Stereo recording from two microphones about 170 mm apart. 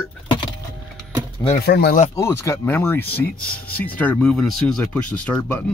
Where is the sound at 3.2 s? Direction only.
60° left (ahead or behind).